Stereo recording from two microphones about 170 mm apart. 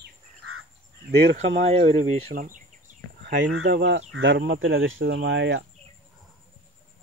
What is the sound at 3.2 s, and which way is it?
Speech, 85° right.